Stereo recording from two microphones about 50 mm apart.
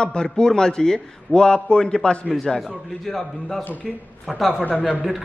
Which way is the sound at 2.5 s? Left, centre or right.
Centre.